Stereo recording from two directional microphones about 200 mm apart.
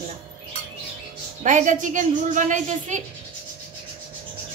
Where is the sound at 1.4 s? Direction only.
40° right (ahead or behind).